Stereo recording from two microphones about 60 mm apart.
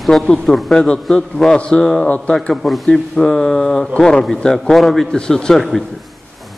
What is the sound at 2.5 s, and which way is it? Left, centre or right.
A man's voice, centre.